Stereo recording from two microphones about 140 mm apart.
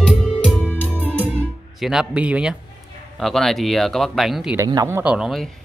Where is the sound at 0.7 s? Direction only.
15° right (ahead or behind).